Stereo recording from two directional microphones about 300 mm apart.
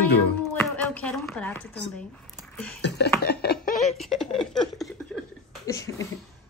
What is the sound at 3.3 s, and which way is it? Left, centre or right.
Laughter, left.